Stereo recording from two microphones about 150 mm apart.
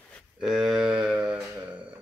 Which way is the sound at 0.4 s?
5° right (ahead or behind).